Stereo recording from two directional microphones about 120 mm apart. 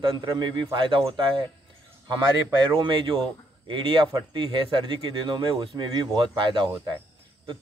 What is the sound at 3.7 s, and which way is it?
Speech, 45° right (ahead or behind).